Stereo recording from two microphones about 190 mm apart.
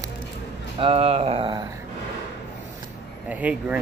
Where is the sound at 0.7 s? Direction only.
30° right (ahead or behind).